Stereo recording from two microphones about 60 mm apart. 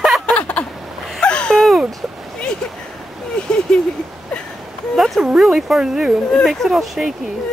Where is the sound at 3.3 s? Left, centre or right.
Centre.